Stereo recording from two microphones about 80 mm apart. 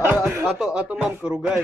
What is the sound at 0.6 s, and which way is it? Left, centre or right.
Speech, centre.